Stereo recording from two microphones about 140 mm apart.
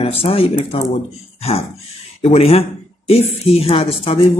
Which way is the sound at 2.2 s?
45° left (ahead or behind).